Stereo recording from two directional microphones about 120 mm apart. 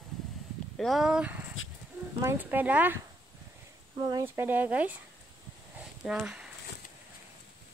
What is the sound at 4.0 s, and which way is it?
Speech, 30° right (ahead or behind).